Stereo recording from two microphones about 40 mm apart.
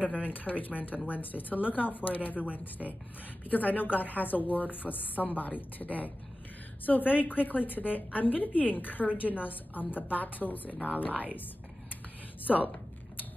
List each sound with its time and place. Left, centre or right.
0.0 s a woman's voice: left
2.8 s speech: centre
3.4 s a woman's voice: left
12.5 s speech: centre